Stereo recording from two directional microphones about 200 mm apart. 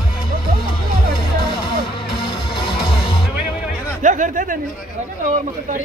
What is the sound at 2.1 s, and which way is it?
Music, 25° left (ahead or behind).